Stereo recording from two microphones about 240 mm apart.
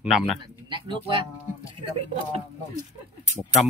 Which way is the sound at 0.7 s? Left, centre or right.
Right.